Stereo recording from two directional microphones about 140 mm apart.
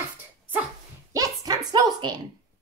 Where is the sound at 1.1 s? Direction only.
25° right (ahead or behind).